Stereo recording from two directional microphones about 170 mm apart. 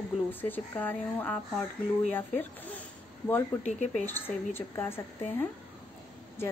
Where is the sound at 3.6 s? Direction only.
45° left (ahead or behind).